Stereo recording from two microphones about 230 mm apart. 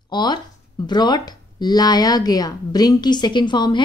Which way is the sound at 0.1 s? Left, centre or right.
Centre.